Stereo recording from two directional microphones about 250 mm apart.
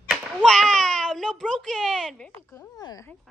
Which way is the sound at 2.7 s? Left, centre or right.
Centre.